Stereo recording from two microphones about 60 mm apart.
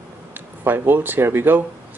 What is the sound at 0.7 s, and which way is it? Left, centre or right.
Speech, right.